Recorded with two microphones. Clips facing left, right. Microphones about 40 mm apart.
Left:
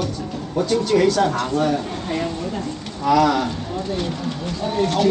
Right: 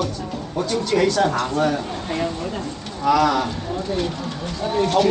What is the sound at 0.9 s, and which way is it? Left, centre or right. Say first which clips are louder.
Speech: even; centre.